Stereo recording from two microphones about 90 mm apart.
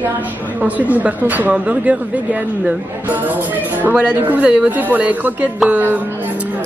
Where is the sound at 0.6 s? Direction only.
15° right (ahead or behind).